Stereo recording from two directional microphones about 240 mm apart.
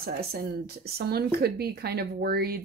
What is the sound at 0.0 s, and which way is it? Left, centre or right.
Speech, right.